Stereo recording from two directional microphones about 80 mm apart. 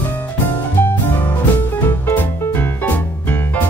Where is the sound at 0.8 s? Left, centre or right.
Left.